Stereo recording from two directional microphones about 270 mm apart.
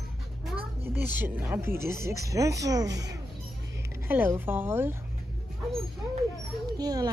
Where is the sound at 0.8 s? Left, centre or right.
Centre.